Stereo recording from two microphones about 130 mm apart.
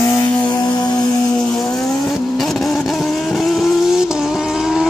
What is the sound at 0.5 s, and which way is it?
Music, 30° left (ahead or behind).